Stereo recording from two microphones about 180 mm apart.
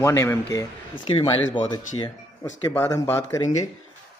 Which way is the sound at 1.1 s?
25° left (ahead or behind).